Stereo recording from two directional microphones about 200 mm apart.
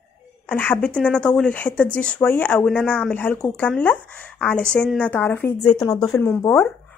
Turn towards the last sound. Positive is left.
turn(degrees=10)  # may be behind; listen again after turning